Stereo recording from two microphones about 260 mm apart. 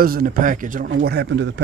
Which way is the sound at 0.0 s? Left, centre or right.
Right.